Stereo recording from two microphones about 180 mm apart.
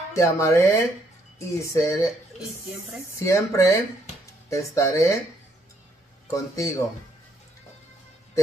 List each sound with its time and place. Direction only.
0.1 s speech: 15° left (ahead or behind)
3.2 s speech: 15° left (ahead or behind)
6.3 s speech: 15° left (ahead or behind)